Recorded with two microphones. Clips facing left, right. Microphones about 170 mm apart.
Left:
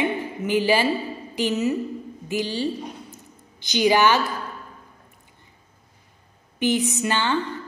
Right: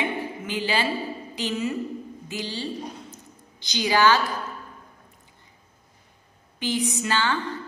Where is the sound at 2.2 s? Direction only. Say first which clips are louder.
Left 8 dB; 15° left (ahead or behind).